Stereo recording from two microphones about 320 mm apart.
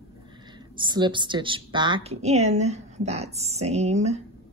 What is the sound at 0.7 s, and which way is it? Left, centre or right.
A woman's voice, centre.